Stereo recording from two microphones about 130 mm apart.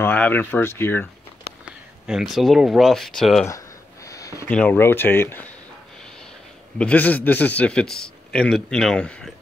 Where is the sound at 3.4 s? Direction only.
25° left (ahead or behind).